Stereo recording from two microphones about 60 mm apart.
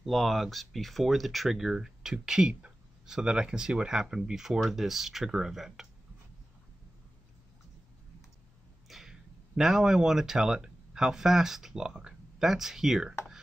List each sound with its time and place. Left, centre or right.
0.0 s speech: centre
8.8 s a sound: centre
9.6 s speech: centre